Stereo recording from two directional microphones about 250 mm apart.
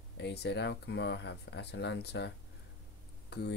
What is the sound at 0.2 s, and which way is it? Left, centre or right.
Speech, left.